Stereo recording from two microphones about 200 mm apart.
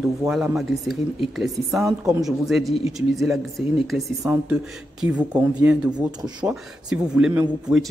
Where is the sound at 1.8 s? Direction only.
15° right (ahead or behind).